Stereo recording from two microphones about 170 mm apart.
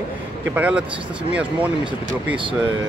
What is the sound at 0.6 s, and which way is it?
Speech, 5° right (ahead or behind).